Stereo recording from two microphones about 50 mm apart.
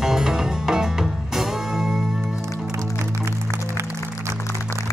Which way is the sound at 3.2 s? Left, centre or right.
Right.